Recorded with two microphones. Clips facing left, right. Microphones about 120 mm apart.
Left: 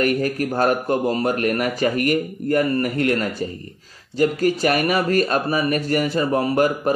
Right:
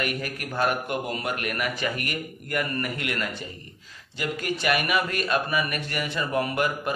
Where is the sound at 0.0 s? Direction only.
40° left (ahead or behind).